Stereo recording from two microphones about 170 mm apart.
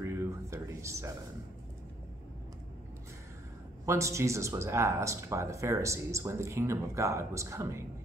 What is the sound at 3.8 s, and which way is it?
Speech, 15° right (ahead or behind).